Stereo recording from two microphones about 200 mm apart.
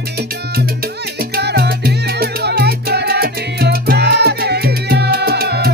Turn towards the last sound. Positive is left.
turn(degrees=-50)  # may be behind; listen again after turning